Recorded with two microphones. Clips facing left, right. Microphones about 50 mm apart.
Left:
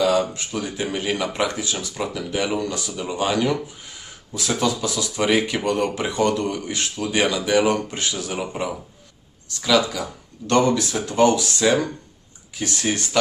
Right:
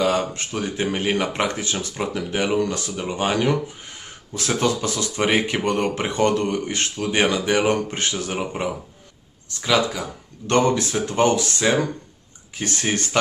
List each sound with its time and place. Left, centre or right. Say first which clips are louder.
0.0 s speech: left 1 dB; right